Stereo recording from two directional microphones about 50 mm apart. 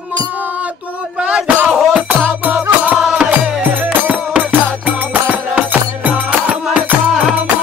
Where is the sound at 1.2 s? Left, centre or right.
Right.